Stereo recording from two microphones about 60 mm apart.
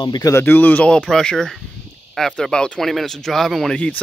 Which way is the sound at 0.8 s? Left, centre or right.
Centre.